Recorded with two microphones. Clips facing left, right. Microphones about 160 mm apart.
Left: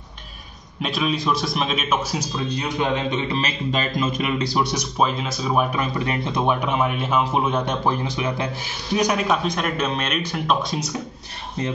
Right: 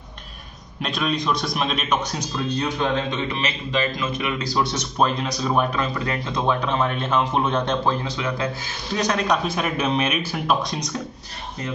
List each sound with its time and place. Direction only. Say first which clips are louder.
0.8 s a man's voice: left 1 dB; 5° left (ahead or behind)
4.0 s speech: left 3 dB; 30° left (ahead or behind)
4.6 s speech: right 2 dB; 5° left (ahead or behind)
9.4 s a man's voice: even; 5° right (ahead or behind)